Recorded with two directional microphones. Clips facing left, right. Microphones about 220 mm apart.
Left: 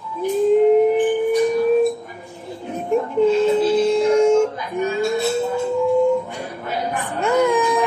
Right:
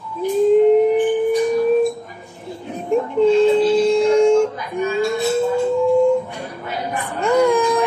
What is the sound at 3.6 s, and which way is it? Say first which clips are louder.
Music: right 2 dB; 5° left (ahead or behind).